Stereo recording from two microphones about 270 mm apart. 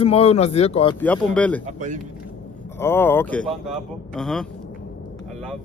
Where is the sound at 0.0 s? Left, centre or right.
Left.